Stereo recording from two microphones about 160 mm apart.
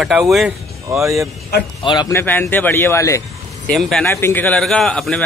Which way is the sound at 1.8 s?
30° left (ahead or behind).